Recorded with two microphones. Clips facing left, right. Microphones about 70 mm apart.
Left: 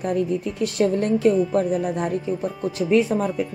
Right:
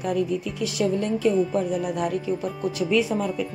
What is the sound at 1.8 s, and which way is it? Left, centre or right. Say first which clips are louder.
A woman's voice: left 2 dB; left.